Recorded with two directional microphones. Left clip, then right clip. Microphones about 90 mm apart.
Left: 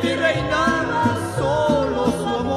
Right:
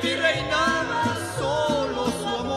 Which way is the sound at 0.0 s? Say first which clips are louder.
Left 3 dB; 40° left (ahead or behind).